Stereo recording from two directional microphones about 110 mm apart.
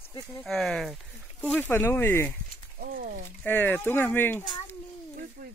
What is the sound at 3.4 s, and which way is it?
Speech, 15° left (ahead or behind).